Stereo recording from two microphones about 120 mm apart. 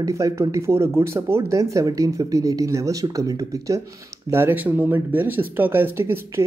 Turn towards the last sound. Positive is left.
turn(degrees=-20)  # may be behind; listen again after turning